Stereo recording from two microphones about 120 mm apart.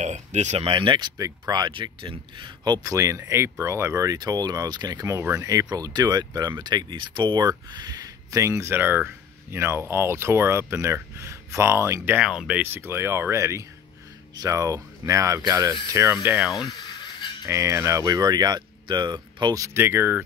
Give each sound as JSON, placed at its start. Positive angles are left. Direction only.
{"t": 0.0, "sound": "speech", "side_deg": -75}
{"t": 0.7, "sound": "speech", "side_deg": -45}
{"t": 12.2, "sound": "speech", "side_deg": -5}
{"t": 12.7, "sound": "speech", "side_deg": -20}
{"t": 16.3, "sound": "speech", "side_deg": -5}
{"t": 17.5, "sound": "speech", "side_deg": -25}